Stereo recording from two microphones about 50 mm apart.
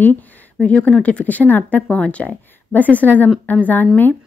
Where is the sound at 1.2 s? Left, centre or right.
Left.